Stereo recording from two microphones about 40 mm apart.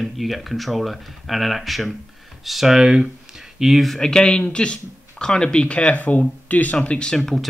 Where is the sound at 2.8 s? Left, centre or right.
Centre.